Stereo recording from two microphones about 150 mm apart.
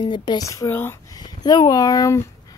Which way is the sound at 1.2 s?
30° left (ahead or behind).